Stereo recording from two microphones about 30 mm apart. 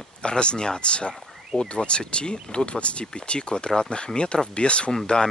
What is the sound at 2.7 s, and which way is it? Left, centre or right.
Speech, left.